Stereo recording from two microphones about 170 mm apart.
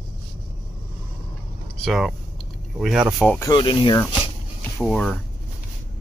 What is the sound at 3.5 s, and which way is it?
Speech, 30° left (ahead or behind).